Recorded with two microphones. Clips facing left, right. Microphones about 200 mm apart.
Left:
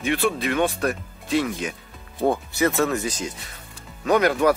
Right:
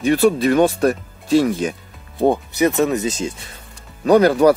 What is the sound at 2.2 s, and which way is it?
Speech, 20° right (ahead or behind).